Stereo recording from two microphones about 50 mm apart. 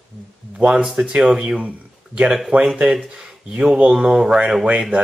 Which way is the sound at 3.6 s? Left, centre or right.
Centre.